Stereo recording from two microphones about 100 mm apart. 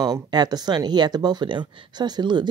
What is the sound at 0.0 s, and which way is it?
Speech, 40° right (ahead or behind).